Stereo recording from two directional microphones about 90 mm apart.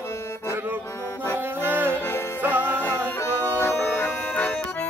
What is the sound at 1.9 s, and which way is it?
Music, 25° left (ahead or behind).